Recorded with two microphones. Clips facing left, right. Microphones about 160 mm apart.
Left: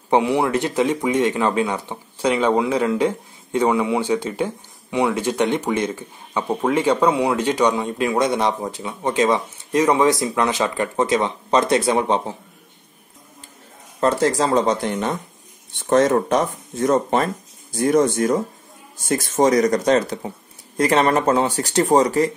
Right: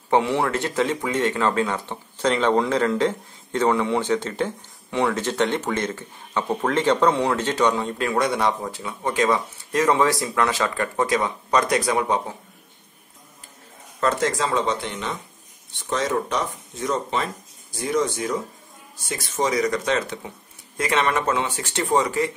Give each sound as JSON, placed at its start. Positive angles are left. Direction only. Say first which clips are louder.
{"t": 0.1, "sound": "speech", "louder": "left 3 dB", "side_deg": 15}
{"t": 13.9, "sound": "speech", "louder": "left 4 dB", "side_deg": 30}